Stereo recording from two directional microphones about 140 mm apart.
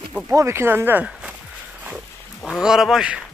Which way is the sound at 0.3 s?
20° right (ahead or behind).